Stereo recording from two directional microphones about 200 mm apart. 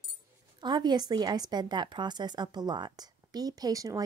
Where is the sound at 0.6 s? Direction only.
20° right (ahead or behind).